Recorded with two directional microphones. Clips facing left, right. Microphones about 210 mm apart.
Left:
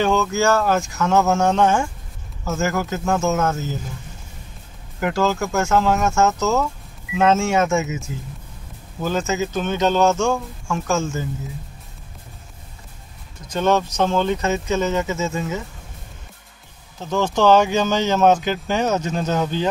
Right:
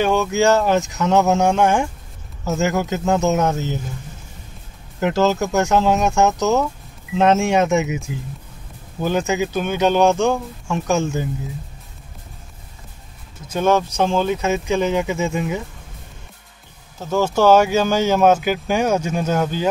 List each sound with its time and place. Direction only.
0.0 s speech: 15° right (ahead or behind)
5.0 s speech: 20° right (ahead or behind)
9.0 s speech: 15° right (ahead or behind)
13.5 s speech: 10° right (ahead or behind)
17.0 s speech: 5° right (ahead or behind)